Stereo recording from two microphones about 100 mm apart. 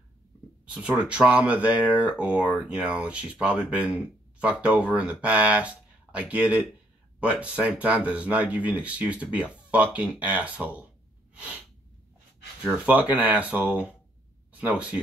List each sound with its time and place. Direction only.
0.7 s speech: 10° right (ahead or behind)
12.6 s speech: 15° right (ahead or behind)